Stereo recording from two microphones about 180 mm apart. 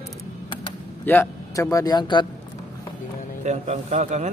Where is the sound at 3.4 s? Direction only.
40° right (ahead or behind).